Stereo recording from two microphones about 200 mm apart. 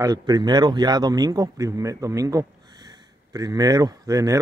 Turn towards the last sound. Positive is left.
turn(degrees=-15)  # may be behind; listen again after turning